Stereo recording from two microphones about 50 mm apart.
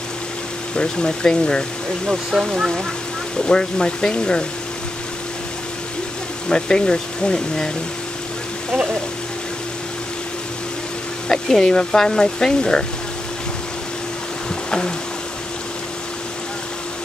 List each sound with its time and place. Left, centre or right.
0.7 s speech: centre
2.4 s speech: centre
3.4 s speech: centre
6.5 s speech: centre
11.2 s speech: centre